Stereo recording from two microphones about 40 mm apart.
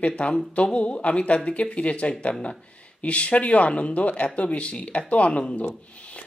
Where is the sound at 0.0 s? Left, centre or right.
Left.